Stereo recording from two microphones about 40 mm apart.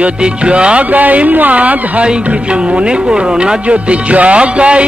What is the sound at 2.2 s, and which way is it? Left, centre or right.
Speech, right.